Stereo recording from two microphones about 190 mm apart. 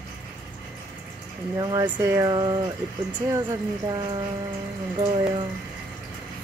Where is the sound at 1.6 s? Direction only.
20° right (ahead or behind).